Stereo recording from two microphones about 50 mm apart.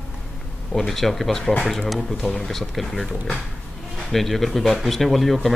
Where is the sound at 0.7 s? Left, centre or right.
Centre.